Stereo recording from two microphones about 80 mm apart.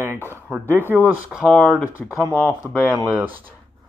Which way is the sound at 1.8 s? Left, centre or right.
Right.